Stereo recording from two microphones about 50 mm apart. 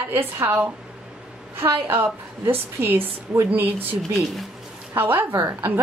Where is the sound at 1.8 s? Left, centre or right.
Right.